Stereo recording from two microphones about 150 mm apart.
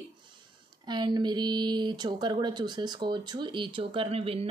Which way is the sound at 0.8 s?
30° right (ahead or behind).